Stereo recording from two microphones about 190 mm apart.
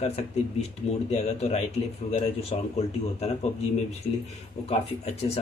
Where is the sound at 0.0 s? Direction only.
35° left (ahead or behind).